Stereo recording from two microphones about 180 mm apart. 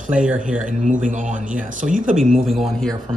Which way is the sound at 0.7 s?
45° right (ahead or behind).